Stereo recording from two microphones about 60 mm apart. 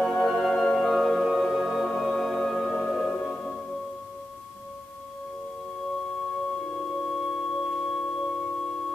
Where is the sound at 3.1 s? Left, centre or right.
Left.